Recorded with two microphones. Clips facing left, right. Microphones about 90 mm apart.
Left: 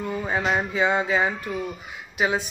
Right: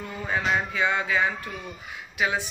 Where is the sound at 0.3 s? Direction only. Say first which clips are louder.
Even; 25° left (ahead or behind).